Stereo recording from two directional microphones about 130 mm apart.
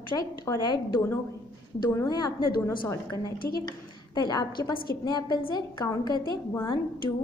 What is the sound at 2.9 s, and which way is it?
Speech, 20° left (ahead or behind).